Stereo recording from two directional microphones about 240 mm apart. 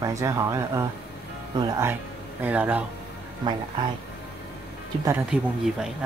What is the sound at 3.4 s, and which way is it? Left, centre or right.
Speech, centre.